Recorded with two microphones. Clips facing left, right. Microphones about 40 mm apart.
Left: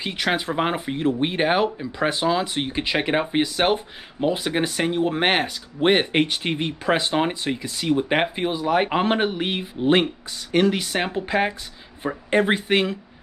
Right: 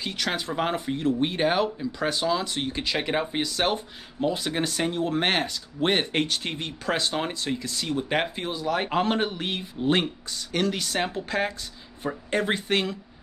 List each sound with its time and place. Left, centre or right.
0.0 s speech: left